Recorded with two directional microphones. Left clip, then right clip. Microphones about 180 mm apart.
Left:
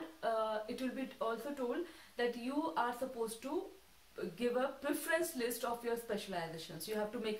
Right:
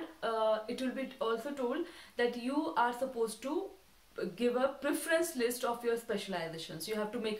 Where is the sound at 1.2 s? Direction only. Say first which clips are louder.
Right 4 dB; 15° right (ahead or behind).